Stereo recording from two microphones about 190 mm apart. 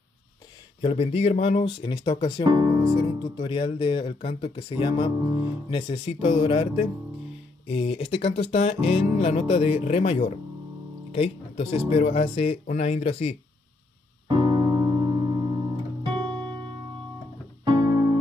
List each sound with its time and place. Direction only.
0.7 s speech: 30° left (ahead or behind)
7.6 s music: 30° left (ahead or behind)
14.2 s piano: 25° right (ahead or behind)
17.6 s music: 20° right (ahead or behind)